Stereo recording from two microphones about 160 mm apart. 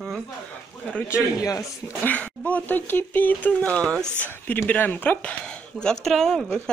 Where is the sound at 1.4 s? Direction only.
20° left (ahead or behind).